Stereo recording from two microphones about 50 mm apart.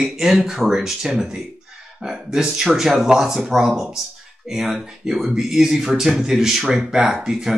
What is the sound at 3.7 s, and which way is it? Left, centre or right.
Speech, centre.